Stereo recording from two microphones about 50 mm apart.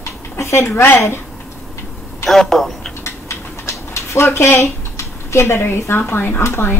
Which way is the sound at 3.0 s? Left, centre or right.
Left.